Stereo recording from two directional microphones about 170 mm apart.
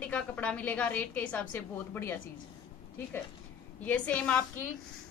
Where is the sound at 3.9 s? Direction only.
10° left (ahead or behind).